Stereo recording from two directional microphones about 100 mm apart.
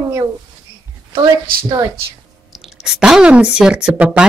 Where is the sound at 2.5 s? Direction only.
5° right (ahead or behind).